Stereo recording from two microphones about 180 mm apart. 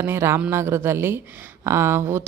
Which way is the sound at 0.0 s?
15° right (ahead or behind).